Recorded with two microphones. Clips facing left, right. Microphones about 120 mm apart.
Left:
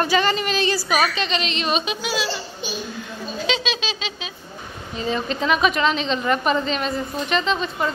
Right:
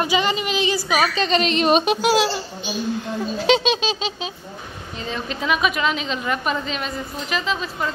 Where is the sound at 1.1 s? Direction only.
45° right (ahead or behind); by 2.3 s 65° right (ahead or behind).